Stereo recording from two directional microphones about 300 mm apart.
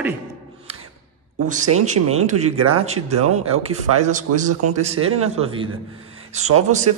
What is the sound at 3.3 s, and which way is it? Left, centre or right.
Speech, right.